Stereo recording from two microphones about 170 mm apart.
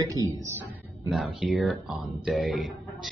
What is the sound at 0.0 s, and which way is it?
Speech, 20° right (ahead or behind).